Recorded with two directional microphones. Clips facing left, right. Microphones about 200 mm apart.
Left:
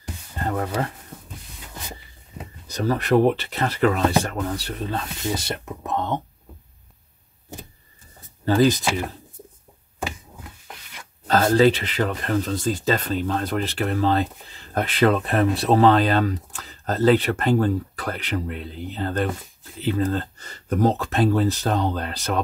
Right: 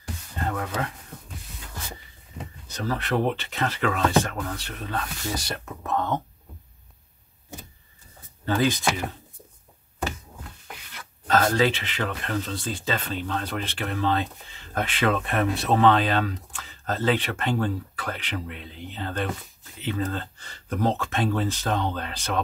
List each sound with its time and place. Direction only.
0.8 s speech: 35° left (ahead or behind)
2.7 s speech: 40° left (ahead or behind); by 6.2 s 20° left (ahead or behind)
8.5 s speech: 35° left (ahead or behind)
11.2 s speech: 30° left (ahead or behind)